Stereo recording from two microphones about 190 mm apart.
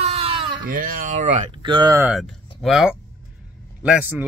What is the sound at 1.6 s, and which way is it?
Speech, 25° right (ahead or behind).